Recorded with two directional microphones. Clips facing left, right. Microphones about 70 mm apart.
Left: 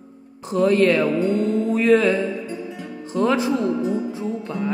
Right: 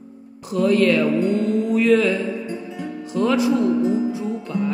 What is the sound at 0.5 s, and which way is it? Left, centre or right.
Speech, left.